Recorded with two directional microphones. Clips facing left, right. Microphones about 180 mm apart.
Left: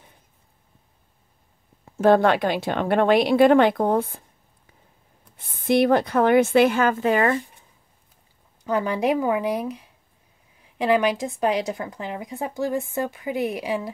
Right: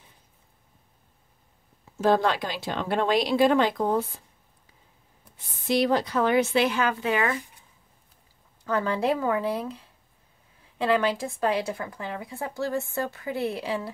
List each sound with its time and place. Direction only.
1.9 s speech: 55° left (ahead or behind)
5.7 s speech: 55° left (ahead or behind)
8.6 s speech: 15° left (ahead or behind)